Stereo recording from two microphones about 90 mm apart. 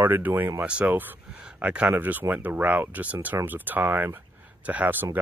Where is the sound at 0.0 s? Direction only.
20° right (ahead or behind).